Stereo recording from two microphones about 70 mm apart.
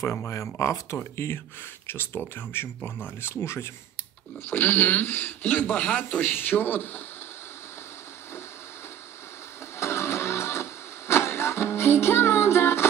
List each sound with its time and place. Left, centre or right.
0.0 s speech: left
4.5 s speech: left
9.8 s music: left